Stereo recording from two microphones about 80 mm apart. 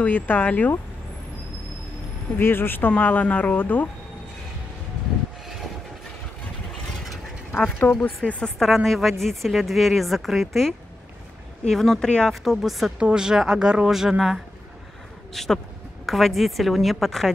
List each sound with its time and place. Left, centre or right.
0.0 s speech: centre
2.3 s speech: left
7.8 s speech: left
8.2 s a woman's voice: centre
11.7 s a woman's voice: centre
12.4 s a woman's voice: centre